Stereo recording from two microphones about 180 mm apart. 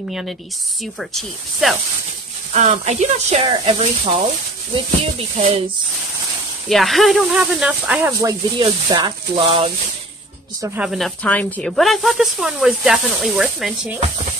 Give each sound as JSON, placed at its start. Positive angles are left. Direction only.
{"t": 0.9, "sound": "speech", "side_deg": 0}
{"t": 2.5, "sound": "speech", "side_deg": -40}
{"t": 6.7, "sound": "speech", "side_deg": 0}
{"t": 8.2, "sound": "speech", "side_deg": -20}
{"t": 10.8, "sound": "speech", "side_deg": 0}